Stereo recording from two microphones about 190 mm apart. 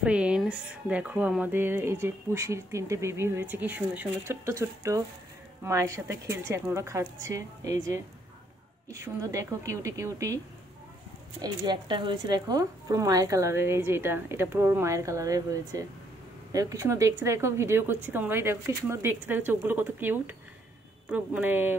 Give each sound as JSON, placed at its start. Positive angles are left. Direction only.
{"t": 0.0, "sound": "speech", "side_deg": -5}
{"t": 11.4, "sound": "speech", "side_deg": -25}